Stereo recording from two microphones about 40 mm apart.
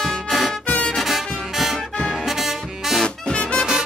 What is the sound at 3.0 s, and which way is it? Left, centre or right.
Music, left.